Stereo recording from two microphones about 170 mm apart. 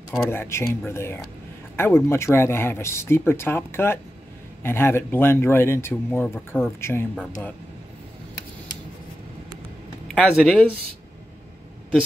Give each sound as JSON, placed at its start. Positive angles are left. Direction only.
{"t": 0.3, "sound": "speech", "side_deg": 15}
{"t": 10.1, "sound": "speech", "side_deg": 5}